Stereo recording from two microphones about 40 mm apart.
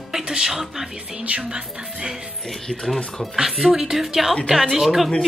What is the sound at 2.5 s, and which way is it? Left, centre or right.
Speech, centre.